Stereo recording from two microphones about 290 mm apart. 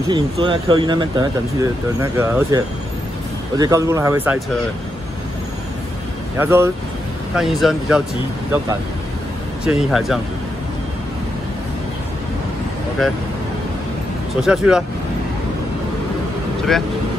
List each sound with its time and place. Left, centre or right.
0.1 s speech: centre
6.3 s speech: centre
9.7 s speech: centre
13.0 s speech: centre
14.4 s speech: centre